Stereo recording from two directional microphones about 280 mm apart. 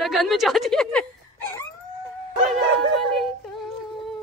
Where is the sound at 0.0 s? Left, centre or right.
Centre.